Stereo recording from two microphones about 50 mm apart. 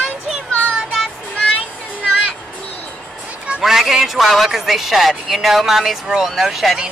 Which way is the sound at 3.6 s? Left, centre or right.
Centre.